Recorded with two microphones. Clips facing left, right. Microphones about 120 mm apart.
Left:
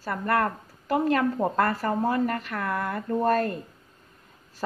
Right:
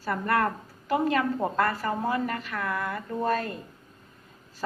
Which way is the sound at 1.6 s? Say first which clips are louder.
Left 2 dB; 45° left (ahead or behind).